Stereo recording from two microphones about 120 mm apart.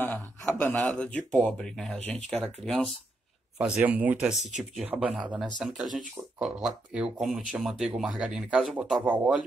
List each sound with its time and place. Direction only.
0.0 s speech: 15° left (ahead or behind)
3.5 s speech: 10° right (ahead or behind)